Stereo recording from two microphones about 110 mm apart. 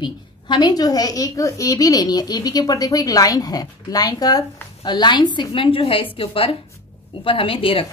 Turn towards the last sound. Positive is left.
turn(degrees=55)  # may be behind; listen again after turning